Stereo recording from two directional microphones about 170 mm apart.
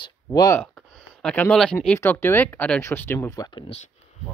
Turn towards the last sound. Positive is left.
turn(degrees=25)  # may be behind; listen again after turning